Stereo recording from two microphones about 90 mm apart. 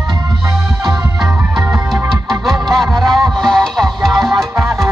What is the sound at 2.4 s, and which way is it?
Music, centre (ahead or behind).